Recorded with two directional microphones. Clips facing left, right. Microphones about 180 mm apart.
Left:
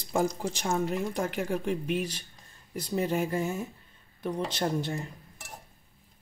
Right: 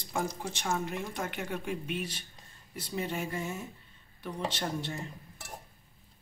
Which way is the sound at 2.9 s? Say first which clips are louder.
Left 6 dB; 40° left (ahead or behind).